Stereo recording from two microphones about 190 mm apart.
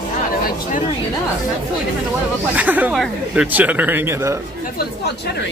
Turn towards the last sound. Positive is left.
turn(degrees=-15)  # may be behind; listen again after turning